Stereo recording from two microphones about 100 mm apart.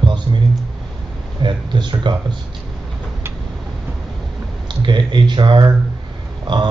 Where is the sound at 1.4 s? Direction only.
50° right (ahead or behind).